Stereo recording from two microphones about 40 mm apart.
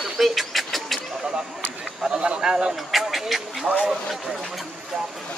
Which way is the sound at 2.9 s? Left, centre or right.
Centre.